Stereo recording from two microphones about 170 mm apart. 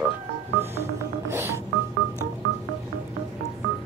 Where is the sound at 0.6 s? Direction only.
15° right (ahead or behind).